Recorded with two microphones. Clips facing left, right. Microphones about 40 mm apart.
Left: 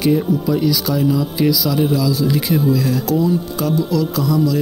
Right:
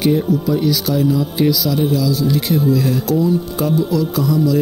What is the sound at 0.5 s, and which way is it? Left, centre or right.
Music, centre.